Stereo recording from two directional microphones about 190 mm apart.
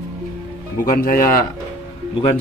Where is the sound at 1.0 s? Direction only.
50° left (ahead or behind).